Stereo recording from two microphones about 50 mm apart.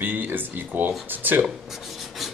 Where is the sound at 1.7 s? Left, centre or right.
Centre.